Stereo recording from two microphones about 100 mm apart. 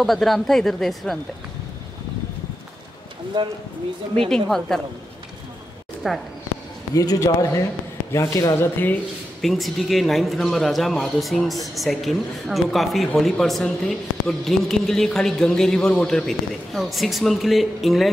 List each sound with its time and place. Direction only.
0.0 s a man's voice: centre (ahead or behind)
3.4 s speech: 45° right (ahead or behind)
4.3 s a man's voice: 5° left (ahead or behind)
6.0 s a man's voice: centre (ahead or behind)
7.0 s speech: 35° left (ahead or behind)
9.4 s a man's voice: centre (ahead or behind)